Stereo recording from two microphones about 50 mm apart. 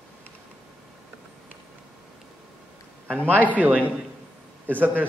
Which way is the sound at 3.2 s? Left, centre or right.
Right.